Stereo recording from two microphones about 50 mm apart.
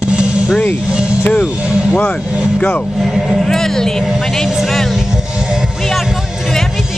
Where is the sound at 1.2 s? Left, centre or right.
Left.